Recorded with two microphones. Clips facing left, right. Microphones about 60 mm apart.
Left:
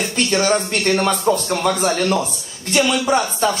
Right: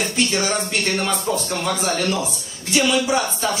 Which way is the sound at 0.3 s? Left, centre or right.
Left.